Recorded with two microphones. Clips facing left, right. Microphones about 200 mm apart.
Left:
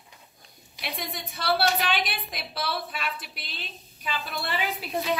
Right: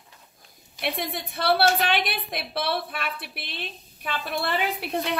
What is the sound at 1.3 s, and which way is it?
A woman's voice, 55° right (ahead or behind).